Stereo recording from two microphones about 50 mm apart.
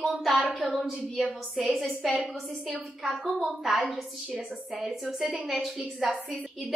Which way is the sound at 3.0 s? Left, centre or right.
Centre.